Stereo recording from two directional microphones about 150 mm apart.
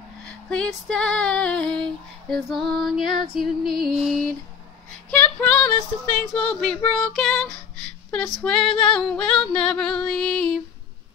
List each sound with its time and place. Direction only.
0.2 s female singing: 5° left (ahead or behind)
5.2 s female singing: 10° left (ahead or behind)